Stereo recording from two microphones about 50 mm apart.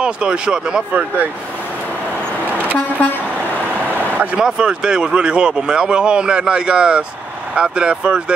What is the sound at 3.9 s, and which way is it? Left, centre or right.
Vehicle, right.